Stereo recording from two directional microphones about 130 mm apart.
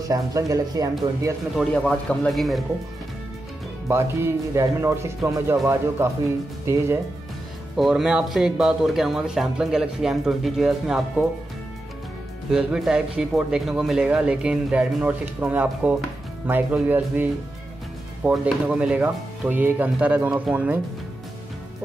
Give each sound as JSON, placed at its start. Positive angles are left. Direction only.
{"t": 0.0, "sound": "speech", "side_deg": -25}
{"t": 1.7, "sound": "speech", "side_deg": 5}
{"t": 3.9, "sound": "speech", "side_deg": -20}
{"t": 7.7, "sound": "speech", "side_deg": 0}
{"t": 12.4, "sound": "speech", "side_deg": -5}